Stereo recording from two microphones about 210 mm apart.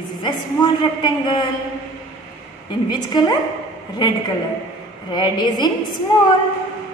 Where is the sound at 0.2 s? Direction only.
20° left (ahead or behind).